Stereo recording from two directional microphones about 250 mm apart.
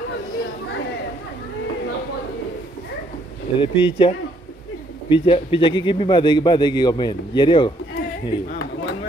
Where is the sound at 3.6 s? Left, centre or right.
Left.